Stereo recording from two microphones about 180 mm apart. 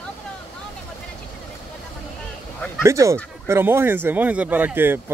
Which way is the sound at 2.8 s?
15° right (ahead or behind).